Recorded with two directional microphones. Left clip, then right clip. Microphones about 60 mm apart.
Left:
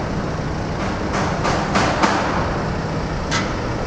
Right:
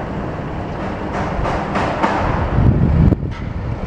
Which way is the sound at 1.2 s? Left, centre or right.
Left.